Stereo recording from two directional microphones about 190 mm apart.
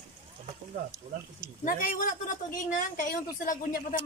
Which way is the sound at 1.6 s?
45° left (ahead or behind).